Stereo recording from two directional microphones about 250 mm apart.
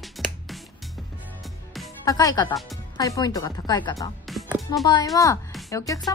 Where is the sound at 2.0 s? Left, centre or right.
Centre.